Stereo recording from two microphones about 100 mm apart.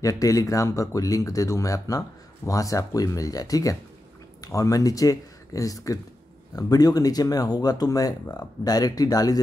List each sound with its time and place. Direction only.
0.0 s speech: 35° left (ahead or behind)